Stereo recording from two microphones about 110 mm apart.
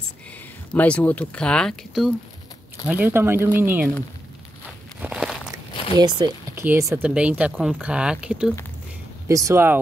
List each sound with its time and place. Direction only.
0.7 s speech: 10° left (ahead or behind)
2.9 s speech: 20° right (ahead or behind)
5.0 s crumpling: 5° right (ahead or behind)
5.9 s speech: 40° right (ahead or behind)
6.5 s speech: 20° right (ahead or behind)
7.0 s speech: 10° right (ahead or behind)
9.3 s speech: 30° right (ahead or behind)